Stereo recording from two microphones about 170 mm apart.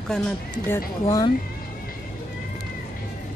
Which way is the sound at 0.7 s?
15° left (ahead or behind).